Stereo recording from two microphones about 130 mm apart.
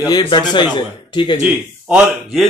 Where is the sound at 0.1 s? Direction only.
35° left (ahead or behind).